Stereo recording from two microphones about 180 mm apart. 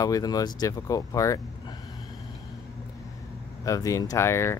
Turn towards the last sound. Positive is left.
turn(degrees=15)  # may be behind; listen again after turning